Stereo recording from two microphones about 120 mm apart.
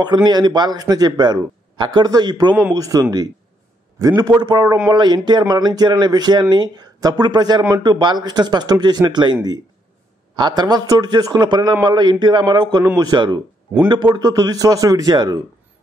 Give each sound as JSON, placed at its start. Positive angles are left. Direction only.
{"t": 0.0, "sound": "speech", "side_deg": -35}